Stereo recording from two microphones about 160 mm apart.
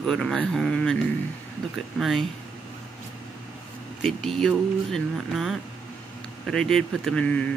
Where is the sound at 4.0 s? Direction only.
Centre (ahead or behind).